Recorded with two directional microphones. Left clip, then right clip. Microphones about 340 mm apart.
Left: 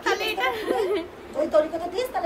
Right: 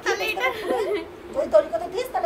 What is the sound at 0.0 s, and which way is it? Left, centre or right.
Chatter, centre.